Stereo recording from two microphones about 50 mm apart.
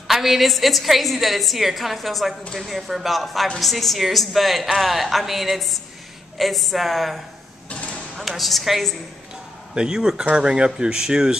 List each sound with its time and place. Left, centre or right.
0.1 s a woman's voice: centre
7.7 s a sound: left
8.2 s a woman's voice: centre
9.8 s speech: centre